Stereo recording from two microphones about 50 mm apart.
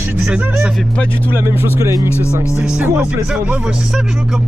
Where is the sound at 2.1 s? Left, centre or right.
Left.